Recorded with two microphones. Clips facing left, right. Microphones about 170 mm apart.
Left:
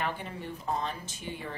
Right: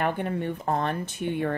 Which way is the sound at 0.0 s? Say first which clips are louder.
Right 8 dB; 55° right (ahead or behind).